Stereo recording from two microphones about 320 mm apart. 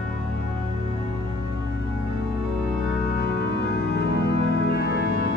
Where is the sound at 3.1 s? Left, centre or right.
Left.